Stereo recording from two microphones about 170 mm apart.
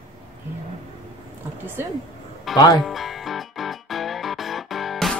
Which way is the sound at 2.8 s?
Centre (ahead or behind).